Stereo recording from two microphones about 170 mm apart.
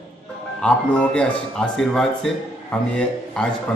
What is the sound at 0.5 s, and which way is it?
Speech, 5° left (ahead or behind).